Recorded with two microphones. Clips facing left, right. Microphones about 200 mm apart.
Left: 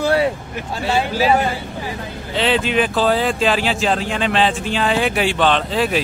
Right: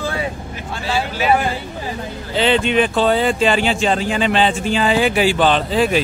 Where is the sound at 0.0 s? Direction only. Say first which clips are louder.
Left 7 dB; 70° left (ahead or behind).